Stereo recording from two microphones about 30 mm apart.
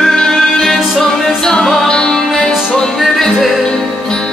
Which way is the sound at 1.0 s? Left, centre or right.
Centre.